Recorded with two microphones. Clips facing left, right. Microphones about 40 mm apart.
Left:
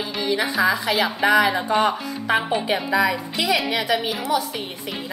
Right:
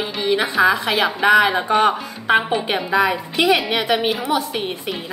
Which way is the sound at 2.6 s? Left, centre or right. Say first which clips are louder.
Right 2 dB; right.